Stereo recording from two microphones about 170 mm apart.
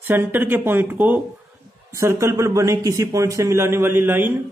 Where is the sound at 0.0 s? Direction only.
15° right (ahead or behind).